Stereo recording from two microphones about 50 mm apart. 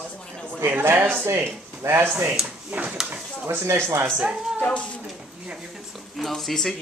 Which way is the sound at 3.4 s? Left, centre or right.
Right.